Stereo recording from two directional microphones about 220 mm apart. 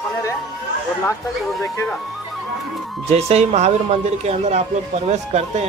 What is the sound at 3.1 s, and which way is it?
Speech, 30° right (ahead or behind).